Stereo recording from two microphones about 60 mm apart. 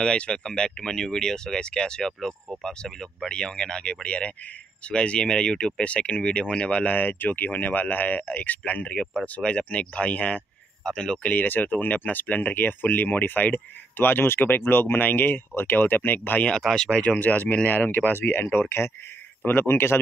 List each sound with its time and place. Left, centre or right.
0.0 s speech: centre
11.3 s speech: left
16.4 s speech: centre; by 20.0 s left